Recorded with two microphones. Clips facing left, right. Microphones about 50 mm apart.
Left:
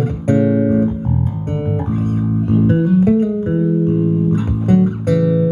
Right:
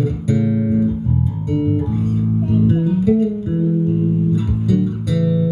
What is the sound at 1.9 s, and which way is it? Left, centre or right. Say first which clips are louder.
Music: left 1 dB; left.